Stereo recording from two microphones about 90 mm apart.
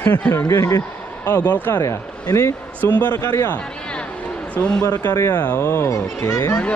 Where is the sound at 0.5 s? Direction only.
35° left (ahead or behind).